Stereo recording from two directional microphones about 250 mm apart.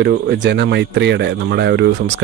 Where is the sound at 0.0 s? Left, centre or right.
Right.